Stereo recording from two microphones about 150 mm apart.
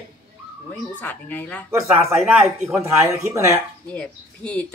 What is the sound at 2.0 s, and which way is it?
Speech, 20° right (ahead or behind).